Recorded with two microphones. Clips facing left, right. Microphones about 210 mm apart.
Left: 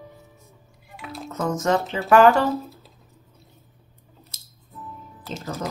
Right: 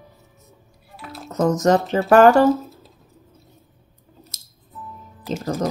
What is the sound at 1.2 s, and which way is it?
Speech, 40° right (ahead or behind).